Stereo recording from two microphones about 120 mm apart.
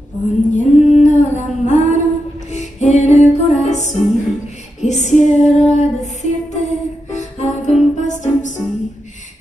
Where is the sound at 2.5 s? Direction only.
70° left (ahead or behind).